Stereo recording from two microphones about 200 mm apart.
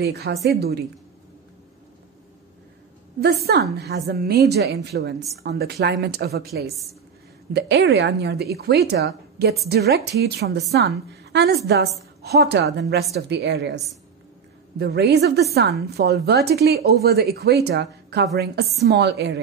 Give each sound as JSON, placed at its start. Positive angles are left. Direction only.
{"t": 0.0, "sound": "a woman's voice", "side_deg": -50}
{"t": 3.2, "sound": "a woman's voice", "side_deg": -50}
{"t": 14.8, "sound": "a woman's voice", "side_deg": -55}